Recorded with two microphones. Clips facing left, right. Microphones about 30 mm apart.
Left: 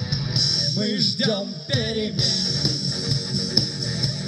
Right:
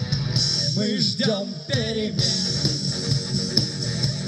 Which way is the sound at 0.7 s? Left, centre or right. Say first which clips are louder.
Even; centre.